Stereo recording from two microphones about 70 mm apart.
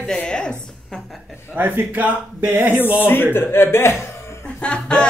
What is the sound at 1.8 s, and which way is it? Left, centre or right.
Speech, right.